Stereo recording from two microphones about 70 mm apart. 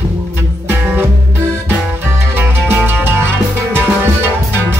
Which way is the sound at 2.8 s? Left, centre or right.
Right.